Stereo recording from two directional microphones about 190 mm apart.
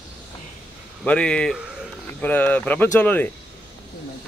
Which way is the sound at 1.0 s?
5° left (ahead or behind).